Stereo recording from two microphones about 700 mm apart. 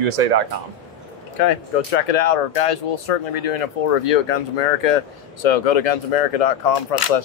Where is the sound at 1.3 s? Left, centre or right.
Left.